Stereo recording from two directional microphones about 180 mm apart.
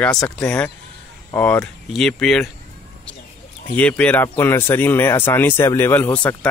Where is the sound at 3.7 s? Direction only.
5° left (ahead or behind).